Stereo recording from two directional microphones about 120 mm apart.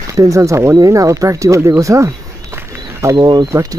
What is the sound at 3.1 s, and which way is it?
Speech, 40° right (ahead or behind).